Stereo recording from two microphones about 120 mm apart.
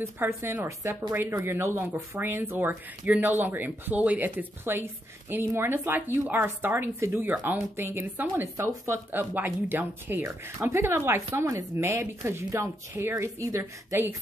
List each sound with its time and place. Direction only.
0.0 s speech: 20° right (ahead or behind)